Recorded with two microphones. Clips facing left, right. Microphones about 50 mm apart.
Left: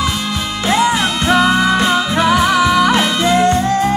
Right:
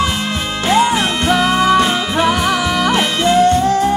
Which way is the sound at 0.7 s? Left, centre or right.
Right.